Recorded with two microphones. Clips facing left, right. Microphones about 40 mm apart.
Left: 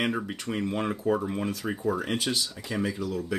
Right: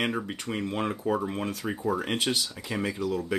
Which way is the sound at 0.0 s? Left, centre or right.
Centre.